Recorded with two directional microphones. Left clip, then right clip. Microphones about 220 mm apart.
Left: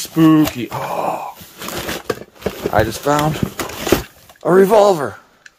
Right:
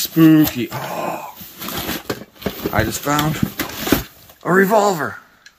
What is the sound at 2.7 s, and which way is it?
Speech, 25° left (ahead or behind).